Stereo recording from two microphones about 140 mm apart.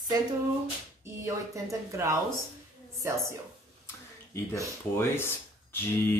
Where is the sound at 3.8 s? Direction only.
20° left (ahead or behind).